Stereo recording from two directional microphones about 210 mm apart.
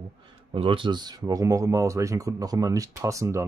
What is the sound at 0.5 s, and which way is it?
Speech, 25° right (ahead or behind).